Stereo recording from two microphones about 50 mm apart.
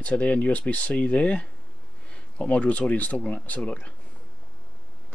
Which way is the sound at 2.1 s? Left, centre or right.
Left.